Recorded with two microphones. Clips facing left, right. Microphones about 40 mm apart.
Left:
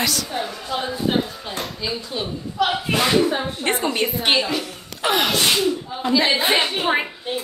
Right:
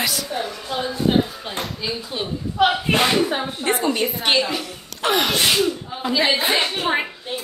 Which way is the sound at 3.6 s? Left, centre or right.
Left.